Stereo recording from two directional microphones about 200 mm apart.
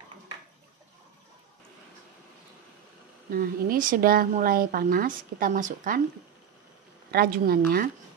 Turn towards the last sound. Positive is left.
turn(degrees=-45)  # may be behind; listen again after turning